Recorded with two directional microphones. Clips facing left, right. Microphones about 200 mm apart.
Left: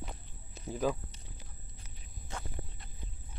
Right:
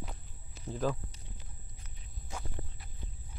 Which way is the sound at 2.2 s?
5° right (ahead or behind).